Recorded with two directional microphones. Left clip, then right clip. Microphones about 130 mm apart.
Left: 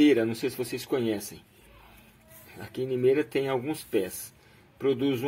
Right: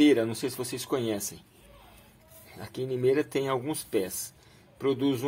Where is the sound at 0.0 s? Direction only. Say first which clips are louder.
Left 1 dB; 15° left (ahead or behind).